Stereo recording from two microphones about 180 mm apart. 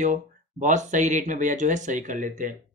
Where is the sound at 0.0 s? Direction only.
45° right (ahead or behind).